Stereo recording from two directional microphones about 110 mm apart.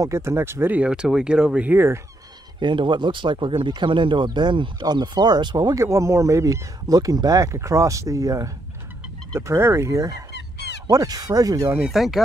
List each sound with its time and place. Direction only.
0.0 s speech: 25° right (ahead or behind)
2.6 s speech: 45° right (ahead or behind)
11.9 s speech: centre (ahead or behind)